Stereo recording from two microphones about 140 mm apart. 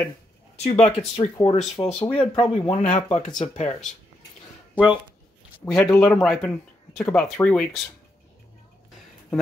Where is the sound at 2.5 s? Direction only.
45° left (ahead or behind).